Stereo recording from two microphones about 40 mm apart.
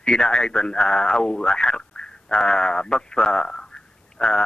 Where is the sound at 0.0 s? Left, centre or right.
Left.